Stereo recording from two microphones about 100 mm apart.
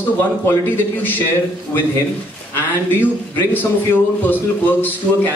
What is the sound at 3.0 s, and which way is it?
A man's voice, 20° left (ahead or behind).